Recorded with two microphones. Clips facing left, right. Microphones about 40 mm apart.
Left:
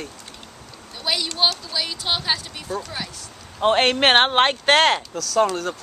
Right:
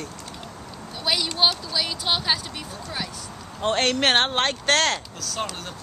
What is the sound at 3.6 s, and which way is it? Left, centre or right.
Speech, left.